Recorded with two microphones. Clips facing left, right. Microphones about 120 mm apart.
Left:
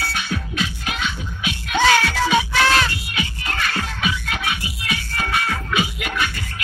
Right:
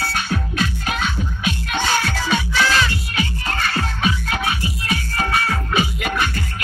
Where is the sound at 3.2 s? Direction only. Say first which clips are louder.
Right 2 dB; 40° right (ahead or behind).